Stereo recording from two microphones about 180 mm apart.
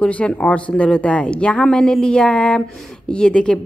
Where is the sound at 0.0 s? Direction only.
5° left (ahead or behind).